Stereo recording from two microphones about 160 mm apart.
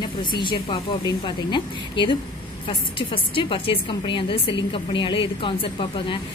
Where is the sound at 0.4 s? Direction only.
30° left (ahead or behind).